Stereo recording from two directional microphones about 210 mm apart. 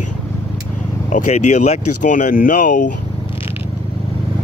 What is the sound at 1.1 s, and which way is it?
Speech, 35° left (ahead or behind).